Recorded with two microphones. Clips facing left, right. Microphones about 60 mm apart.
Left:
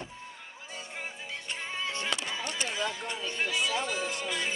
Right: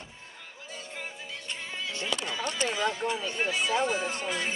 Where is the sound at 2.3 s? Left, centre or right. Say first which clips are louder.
Right 3 dB; centre.